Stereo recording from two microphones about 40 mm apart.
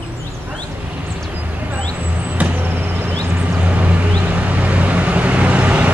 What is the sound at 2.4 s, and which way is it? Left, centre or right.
Vehicle, right.